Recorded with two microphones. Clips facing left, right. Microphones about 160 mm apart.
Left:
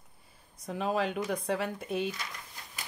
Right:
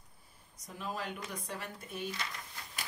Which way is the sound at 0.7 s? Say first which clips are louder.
Left 10 dB; 90° left.